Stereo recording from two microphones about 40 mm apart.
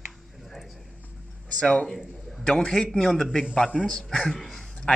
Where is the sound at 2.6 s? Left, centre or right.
Centre.